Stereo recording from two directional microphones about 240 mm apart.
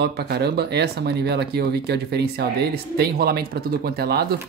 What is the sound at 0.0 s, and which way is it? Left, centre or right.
Speech, right.